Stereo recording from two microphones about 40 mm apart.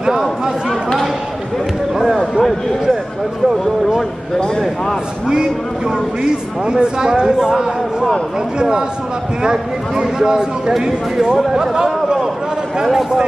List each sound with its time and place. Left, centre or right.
2.0 s speech: centre
4.4 s a man's voice: centre
5.3 s speech: centre
10.7 s speech: centre
11.5 s chatter: centre
12.8 s speech: centre